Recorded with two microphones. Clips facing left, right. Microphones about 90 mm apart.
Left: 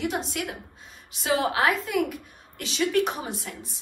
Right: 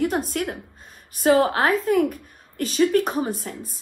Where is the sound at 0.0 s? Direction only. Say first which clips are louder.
Right 5 dB; 50° right (ahead or behind).